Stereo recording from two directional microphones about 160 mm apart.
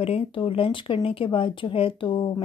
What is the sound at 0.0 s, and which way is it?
Speech, 35° left (ahead or behind).